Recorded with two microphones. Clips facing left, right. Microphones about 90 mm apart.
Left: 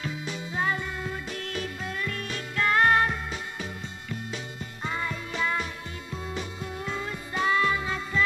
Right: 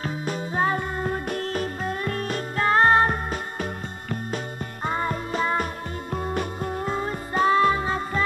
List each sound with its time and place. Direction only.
0.0 s music: 40° right (ahead or behind)
4.8 s music: 40° right (ahead or behind)